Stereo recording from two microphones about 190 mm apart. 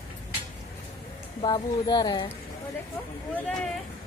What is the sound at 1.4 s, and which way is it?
Speech, 20° left (ahead or behind).